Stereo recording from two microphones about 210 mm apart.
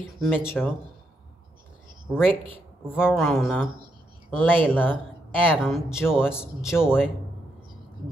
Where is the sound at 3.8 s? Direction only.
20° right (ahead or behind).